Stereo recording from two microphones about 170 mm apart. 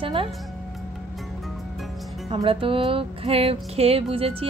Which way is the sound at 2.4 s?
30° right (ahead or behind).